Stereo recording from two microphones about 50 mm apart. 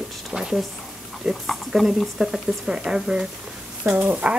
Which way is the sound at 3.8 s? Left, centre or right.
Right.